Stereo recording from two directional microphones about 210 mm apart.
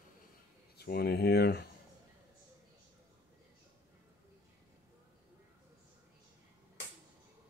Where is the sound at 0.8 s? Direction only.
50° left (ahead or behind).